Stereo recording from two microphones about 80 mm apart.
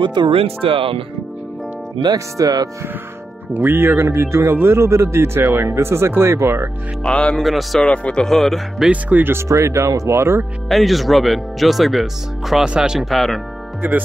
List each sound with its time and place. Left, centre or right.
0.0 s speech: right
2.0 s speech: right
3.5 s speech: right
7.0 s speech: centre
7.4 s speech: centre
7.8 s speech: centre
8.9 s speech: centre
9.3 s speech: right
10.7 s speech: centre
13.1 s speech: centre